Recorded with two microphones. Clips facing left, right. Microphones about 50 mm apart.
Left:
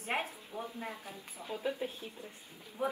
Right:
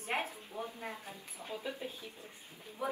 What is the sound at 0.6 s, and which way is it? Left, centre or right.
Speech, left.